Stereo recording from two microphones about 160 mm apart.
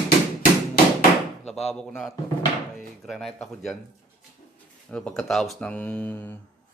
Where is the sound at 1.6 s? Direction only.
Centre (ahead or behind).